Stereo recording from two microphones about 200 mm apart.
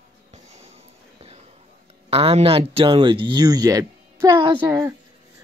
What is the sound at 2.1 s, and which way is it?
Speech, 30° right (ahead or behind).